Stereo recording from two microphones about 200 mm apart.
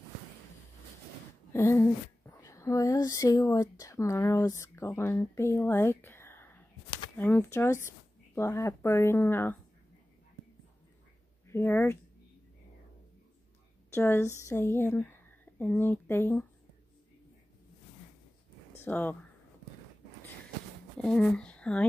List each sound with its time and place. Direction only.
1.5 s a woman's voice: 10° left (ahead or behind)
11.4 s speech: 10° left (ahead or behind)
13.9 s a woman's voice: 15° left (ahead or behind)
18.9 s a woman's voice: 10° left (ahead or behind)
21.0 s speech: 5° left (ahead or behind)